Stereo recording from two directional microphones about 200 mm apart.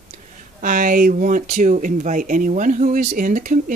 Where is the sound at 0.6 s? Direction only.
45° right (ahead or behind).